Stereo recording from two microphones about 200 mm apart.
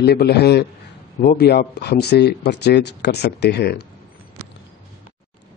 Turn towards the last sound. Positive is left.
turn(degrees=55)  # may be behind; listen again after turning